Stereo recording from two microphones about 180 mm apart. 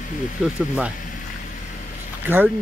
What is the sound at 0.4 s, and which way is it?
Speech, 5° right (ahead or behind).